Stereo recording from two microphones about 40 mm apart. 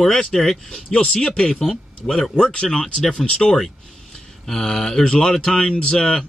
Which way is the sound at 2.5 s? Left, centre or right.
Centre.